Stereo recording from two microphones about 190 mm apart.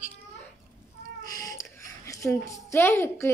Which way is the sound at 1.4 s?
20° left (ahead or behind).